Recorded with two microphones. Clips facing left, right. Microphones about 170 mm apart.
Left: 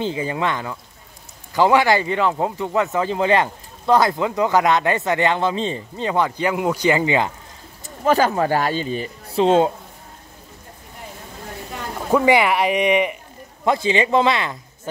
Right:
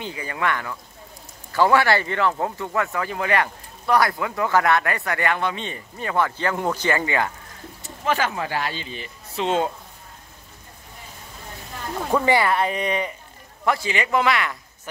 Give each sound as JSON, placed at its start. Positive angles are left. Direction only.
{"t": 0.0, "sound": "speech", "side_deg": 25}
{"t": 8.0, "sound": "speech", "side_deg": 40}
{"t": 12.1, "sound": "speech", "side_deg": 10}